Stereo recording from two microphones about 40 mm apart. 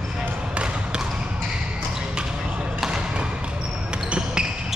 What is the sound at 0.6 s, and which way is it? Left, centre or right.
Basketball bounce, right.